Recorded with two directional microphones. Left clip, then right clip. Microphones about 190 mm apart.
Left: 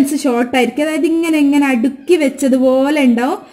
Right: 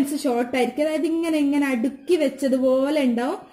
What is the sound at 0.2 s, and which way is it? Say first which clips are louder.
A woman's voice: left 8 dB; 30° left (ahead or behind).